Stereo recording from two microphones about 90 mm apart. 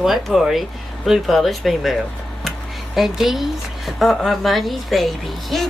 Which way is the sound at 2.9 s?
5° right (ahead or behind).